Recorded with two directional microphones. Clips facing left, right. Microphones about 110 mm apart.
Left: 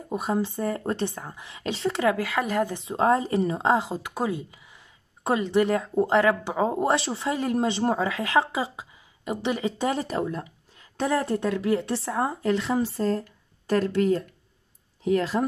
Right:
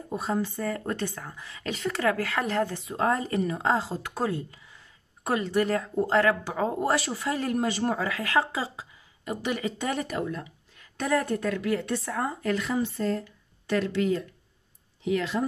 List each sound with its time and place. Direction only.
0.1 s speech: 15° left (ahead or behind)
2.8 s speech: 25° left (ahead or behind)